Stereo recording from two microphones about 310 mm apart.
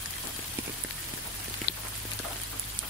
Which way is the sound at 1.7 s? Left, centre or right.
Left.